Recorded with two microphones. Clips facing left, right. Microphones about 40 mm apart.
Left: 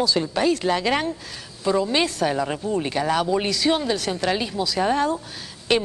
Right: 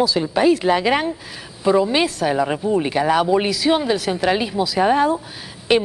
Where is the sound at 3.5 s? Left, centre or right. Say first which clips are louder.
Right 4 dB; centre.